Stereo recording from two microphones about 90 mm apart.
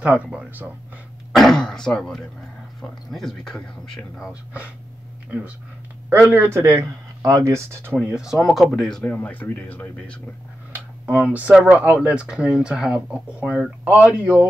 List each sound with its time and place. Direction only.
0.0 s speech: 15° right (ahead or behind)
1.3 s throat clearing: 5° left (ahead or behind)
3.1 s speech: 5° left (ahead or behind)
4.3 s speech: 15° right (ahead or behind)
6.3 s speech: 25° right (ahead or behind)
7.9 s speech: 10° right (ahead or behind)
9.0 s speech: 20° left (ahead or behind)
10.7 s a sound: 20° right (ahead or behind)
11.2 s speech: 15° right (ahead or behind)